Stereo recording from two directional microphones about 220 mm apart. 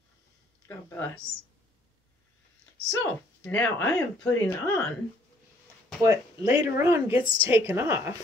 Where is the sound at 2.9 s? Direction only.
10° left (ahead or behind).